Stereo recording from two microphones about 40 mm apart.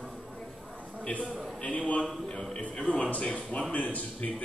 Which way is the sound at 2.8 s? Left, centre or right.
Left.